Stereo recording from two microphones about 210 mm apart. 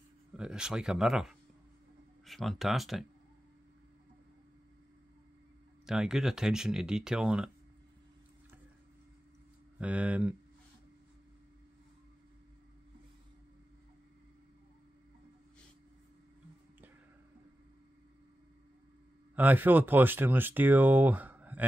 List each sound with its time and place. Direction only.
0.3 s speech: 5° right (ahead or behind)
5.9 s speech: centre (ahead or behind)
9.8 s speech: 5° right (ahead or behind)
19.3 s speech: 10° right (ahead or behind)